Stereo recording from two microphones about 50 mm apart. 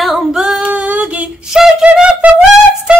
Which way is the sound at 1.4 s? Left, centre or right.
Centre.